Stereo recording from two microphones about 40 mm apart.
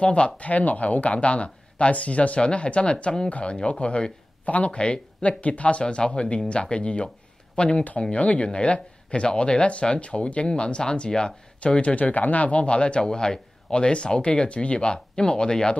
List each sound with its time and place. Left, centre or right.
0.0 s speech: left
0.4 s speech: left
11.8 s speech: left